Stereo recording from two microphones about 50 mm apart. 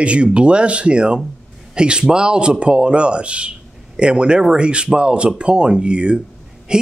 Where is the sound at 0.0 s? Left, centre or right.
Right.